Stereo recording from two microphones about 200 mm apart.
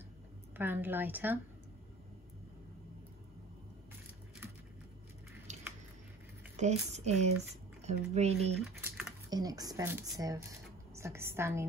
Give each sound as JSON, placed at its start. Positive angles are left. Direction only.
{"t": 0.6, "sound": "speech", "side_deg": -10}
{"t": 5.5, "sound": "biting", "side_deg": -35}
{"t": 6.5, "sound": "speech", "side_deg": -35}
{"t": 9.3, "sound": "speech", "side_deg": -20}